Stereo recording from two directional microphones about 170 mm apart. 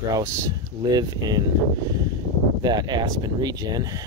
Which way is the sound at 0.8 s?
25° right (ahead or behind).